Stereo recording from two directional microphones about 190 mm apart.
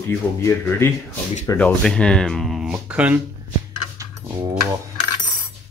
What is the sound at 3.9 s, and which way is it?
Dog, 20° right (ahead or behind).